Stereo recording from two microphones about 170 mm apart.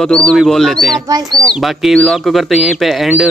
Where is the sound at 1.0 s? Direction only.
20° right (ahead or behind).